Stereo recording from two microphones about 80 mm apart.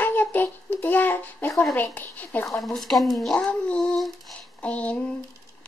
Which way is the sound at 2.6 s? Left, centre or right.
Centre.